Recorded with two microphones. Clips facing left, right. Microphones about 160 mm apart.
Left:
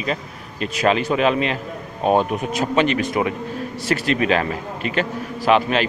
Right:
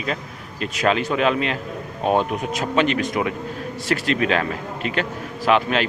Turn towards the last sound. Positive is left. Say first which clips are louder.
# left 2 dB
turn(degrees=0)  # may be behind; listen again after turning